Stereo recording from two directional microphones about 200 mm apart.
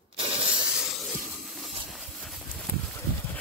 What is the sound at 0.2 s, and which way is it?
Spray, 25° right (ahead or behind).